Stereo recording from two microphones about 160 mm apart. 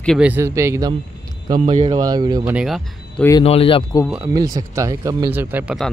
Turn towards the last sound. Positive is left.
turn(degrees=-10)  # may be behind; listen again after turning